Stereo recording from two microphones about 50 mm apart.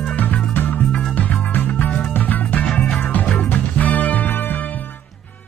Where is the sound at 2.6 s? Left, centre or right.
Left.